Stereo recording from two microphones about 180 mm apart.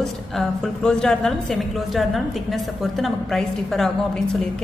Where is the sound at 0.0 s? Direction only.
5° left (ahead or behind).